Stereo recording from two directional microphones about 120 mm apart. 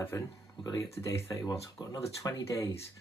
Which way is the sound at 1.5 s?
35° left (ahead or behind).